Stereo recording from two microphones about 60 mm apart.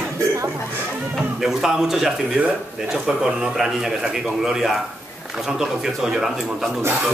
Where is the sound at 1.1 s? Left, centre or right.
Centre.